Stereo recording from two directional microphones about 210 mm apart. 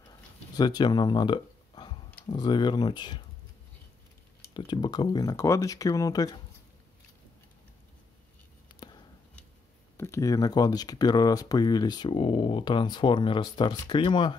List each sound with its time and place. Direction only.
0.6 s speech: 20° left (ahead or behind)
4.6 s speech: 20° left (ahead or behind)
8.6 s a sound: 20° left (ahead or behind)
9.9 s speech: 10° left (ahead or behind)